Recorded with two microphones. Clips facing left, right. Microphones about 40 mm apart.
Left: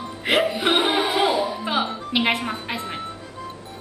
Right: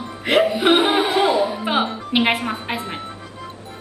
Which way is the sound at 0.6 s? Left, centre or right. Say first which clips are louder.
Right 4 dB; centre.